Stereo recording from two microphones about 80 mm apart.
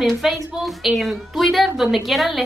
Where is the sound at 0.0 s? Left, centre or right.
Centre.